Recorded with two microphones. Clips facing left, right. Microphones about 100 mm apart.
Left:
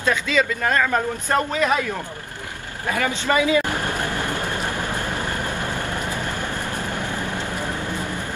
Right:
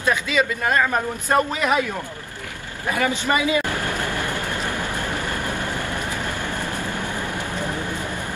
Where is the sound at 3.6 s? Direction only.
20° left (ahead or behind).